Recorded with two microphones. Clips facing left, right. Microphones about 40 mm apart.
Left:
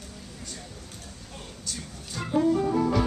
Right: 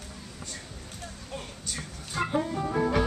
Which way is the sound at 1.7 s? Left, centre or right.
Right.